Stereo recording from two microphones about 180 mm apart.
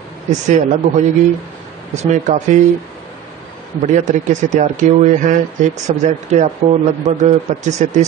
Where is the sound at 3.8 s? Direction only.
40° right (ahead or behind).